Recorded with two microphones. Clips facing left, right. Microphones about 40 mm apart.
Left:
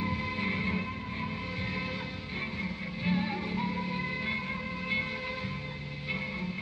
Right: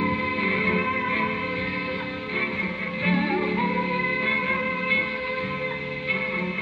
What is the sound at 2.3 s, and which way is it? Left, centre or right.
Music, right.